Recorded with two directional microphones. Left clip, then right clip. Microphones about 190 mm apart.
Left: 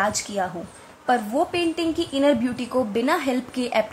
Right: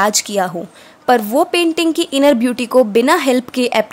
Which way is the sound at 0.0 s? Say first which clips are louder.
Right 9 dB; 50° right (ahead or behind).